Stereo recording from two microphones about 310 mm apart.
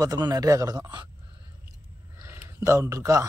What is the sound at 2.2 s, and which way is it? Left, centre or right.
Speech, centre.